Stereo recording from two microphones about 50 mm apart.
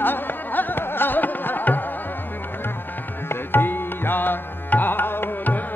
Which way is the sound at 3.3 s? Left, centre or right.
Left.